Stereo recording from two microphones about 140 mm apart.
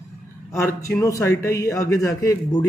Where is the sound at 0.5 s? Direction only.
20° left (ahead or behind).